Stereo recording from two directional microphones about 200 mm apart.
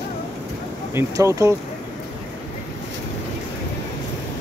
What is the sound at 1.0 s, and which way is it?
Speech, 15° right (ahead or behind).